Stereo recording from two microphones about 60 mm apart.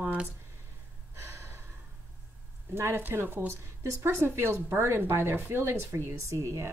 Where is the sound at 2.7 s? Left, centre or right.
Right.